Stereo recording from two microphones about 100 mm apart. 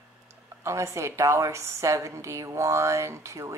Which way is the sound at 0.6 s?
30° right (ahead or behind).